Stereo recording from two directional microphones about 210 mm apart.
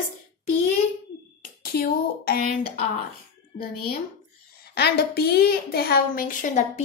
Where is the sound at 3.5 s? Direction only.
40° left (ahead or behind).